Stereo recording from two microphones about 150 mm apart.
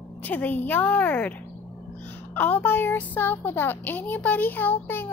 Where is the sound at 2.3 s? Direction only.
10° left (ahead or behind).